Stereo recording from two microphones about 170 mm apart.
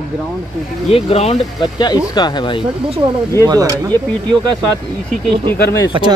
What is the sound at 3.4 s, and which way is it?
Speech, 20° right (ahead or behind).